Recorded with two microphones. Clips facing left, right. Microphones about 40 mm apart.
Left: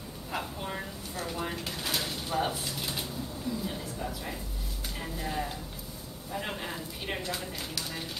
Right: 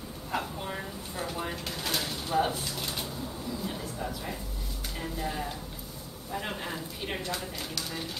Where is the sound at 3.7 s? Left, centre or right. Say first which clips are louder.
Right 1 dB; centre.